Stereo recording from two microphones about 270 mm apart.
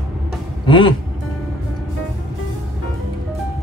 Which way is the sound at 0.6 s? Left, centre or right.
Centre.